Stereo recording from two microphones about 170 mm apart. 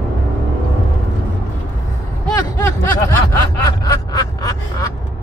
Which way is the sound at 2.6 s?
15° left (ahead or behind).